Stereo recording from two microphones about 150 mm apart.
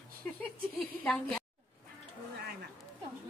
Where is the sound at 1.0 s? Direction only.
5° left (ahead or behind).